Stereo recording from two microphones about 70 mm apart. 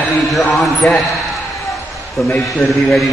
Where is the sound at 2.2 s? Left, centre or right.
Centre.